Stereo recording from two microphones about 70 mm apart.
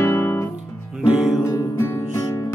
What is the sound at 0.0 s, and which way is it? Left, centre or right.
Music, left.